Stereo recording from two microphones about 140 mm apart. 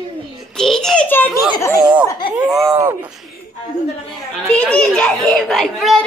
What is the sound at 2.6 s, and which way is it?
Speech, 20° right (ahead or behind).